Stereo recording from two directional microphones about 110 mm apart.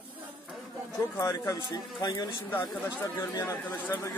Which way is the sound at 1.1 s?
35° left (ahead or behind).